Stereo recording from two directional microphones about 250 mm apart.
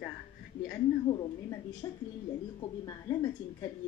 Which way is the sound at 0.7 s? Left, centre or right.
Centre.